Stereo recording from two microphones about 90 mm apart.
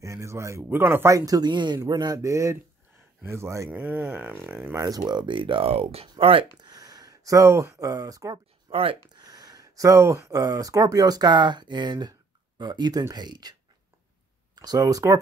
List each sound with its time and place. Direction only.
0.0 s speech: 35° right (ahead or behind)
1.1 s speech: 45° right (ahead or behind)
3.7 s speech: 20° right (ahead or behind)
4.7 s speech: 45° right (ahead or behind); by 6.4 s 90° right
6.6 s speech: 45° right (ahead or behind)
8.6 s a sound: 90° right
9.1 s speech: 45° right (ahead or behind)